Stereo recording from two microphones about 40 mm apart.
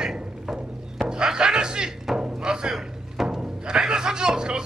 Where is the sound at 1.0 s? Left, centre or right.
Centre.